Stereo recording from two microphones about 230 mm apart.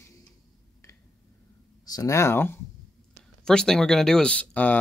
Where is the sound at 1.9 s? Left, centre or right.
Centre.